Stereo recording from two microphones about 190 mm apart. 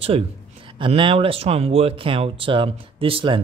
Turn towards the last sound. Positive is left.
turn(degrees=-30)  # may be behind; listen again after turning